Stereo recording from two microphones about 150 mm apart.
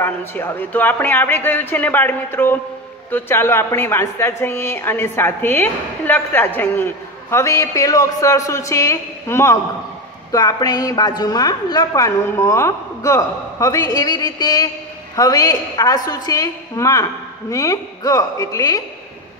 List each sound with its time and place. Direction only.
0.0 s a woman's voice: 15° left (ahead or behind)